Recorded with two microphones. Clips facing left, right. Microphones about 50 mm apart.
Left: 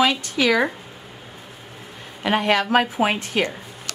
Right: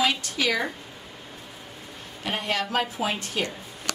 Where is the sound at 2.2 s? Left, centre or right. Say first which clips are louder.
Left 9 dB; left.